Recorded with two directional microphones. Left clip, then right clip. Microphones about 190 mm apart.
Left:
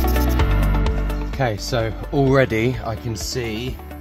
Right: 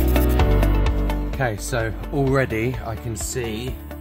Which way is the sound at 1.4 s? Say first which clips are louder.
Left 3 dB; 15° left (ahead or behind).